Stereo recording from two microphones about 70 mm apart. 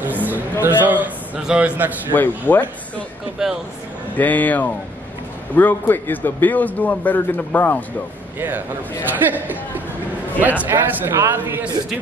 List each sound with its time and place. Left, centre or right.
0.0 s a sound: right
1.4 s a man's voice: centre
1.8 s a man's voice: right
2.1 s a man's voice: left
3.4 s a man's voice: centre
4.2 s a man's voice: left
8.4 s a man's voice: right